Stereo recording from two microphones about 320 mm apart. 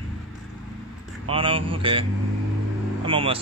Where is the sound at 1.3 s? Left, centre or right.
Centre.